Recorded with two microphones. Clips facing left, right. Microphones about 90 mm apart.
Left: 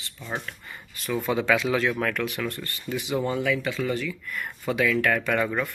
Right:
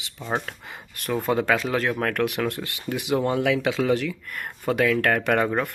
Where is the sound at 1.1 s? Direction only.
45° right (ahead or behind).